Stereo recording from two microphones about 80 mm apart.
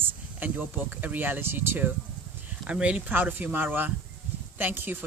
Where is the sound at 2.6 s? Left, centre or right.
Centre.